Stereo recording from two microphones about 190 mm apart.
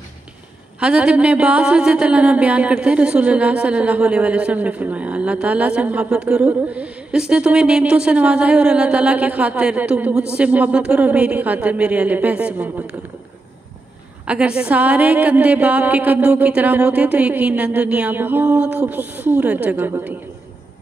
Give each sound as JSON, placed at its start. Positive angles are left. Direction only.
{"t": 0.7, "sound": "a woman's voice", "side_deg": -5}
{"t": 14.2, "sound": "a woman's voice", "side_deg": -5}